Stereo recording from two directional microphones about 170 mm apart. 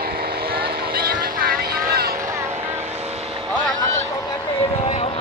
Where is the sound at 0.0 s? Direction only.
65° right (ahead or behind).